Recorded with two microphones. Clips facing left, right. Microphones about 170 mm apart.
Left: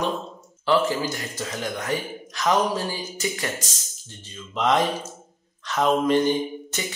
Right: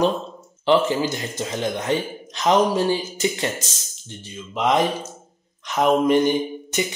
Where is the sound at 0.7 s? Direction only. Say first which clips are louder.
Right 3 dB; 20° right (ahead or behind).